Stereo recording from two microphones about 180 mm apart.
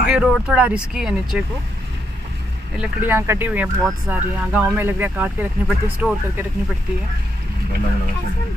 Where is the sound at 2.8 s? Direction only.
10° right (ahead or behind).